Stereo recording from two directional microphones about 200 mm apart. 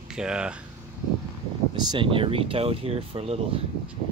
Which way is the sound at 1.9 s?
25° right (ahead or behind).